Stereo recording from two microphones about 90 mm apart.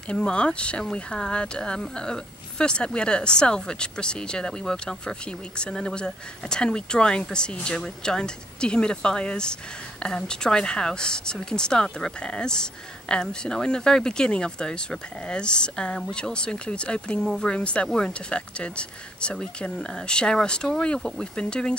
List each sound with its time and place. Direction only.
0.1 s speech: 10° left (ahead or behind)